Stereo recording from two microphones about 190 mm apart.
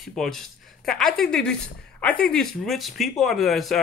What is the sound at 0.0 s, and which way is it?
Speech, centre (ahead or behind).